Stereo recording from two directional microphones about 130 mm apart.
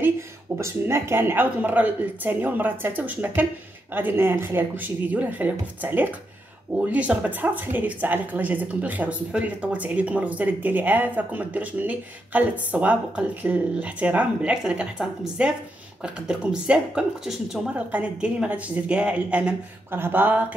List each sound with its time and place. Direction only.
0.6 s speech: 20° right (ahead or behind)